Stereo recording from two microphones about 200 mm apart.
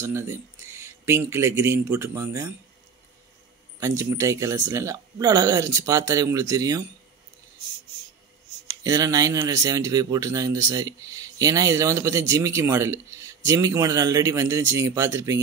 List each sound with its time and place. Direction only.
0.0 s speech: 10° right (ahead or behind)
3.8 s speech: 15° right (ahead or behind)
8.8 s speech: 20° right (ahead or behind)